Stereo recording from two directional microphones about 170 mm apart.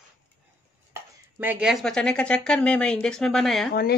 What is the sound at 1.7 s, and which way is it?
Speech, 5° left (ahead or behind).